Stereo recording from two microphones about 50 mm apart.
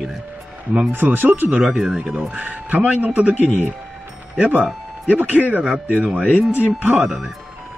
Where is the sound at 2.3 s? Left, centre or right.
Right.